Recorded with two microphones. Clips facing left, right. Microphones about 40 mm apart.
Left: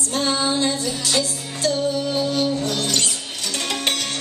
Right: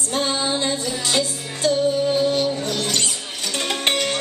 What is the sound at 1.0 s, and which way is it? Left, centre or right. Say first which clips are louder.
Music: right 1 dB; right.